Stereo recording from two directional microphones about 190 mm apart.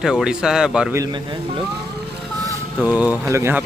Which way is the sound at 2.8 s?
5° right (ahead or behind).